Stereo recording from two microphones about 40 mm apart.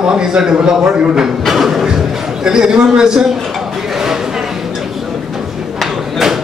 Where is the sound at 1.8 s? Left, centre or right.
Centre.